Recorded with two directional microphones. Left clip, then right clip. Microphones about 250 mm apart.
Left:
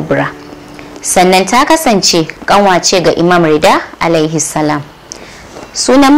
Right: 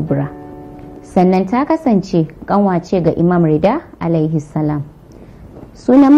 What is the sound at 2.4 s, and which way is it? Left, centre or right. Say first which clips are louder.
Speech: left 9 dB; left.